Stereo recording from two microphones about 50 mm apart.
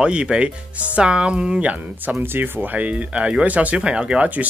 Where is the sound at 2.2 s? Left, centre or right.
Right.